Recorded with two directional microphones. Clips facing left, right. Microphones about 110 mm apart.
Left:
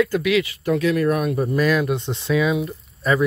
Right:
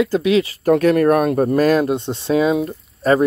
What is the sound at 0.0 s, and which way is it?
Speech, 30° right (ahead or behind).